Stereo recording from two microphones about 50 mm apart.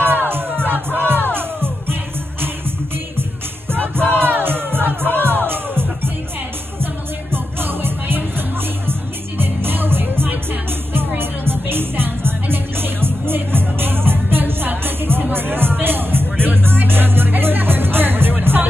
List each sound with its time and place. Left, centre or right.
0.0 s music: right
4.2 s music: right